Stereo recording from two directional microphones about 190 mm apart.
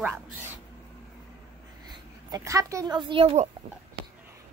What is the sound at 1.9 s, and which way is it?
A woman's voice, 20° right (ahead or behind).